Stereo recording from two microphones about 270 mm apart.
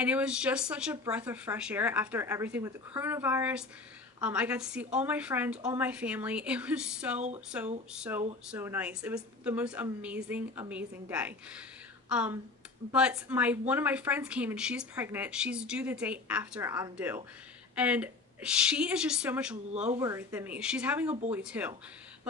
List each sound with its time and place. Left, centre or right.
0.0 s speech: centre
7.2 s speech: right
7.9 s speech: centre